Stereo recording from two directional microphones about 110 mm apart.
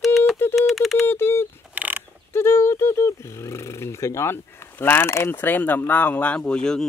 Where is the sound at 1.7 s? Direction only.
15° right (ahead or behind).